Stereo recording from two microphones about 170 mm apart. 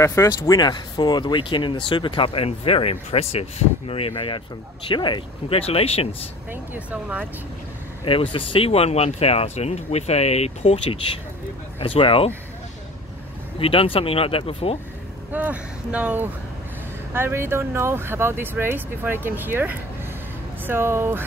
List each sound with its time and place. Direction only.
0.0 s speech: 20° left (ahead or behind); by 6.0 s 35° left (ahead or behind)
6.5 s speech: 10° right (ahead or behind)
8.0 s speech: 30° left (ahead or behind)
13.6 s speech: 35° left (ahead or behind)
15.3 s speech: 10° right (ahead or behind)